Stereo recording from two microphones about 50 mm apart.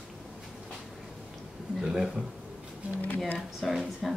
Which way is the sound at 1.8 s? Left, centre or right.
Centre.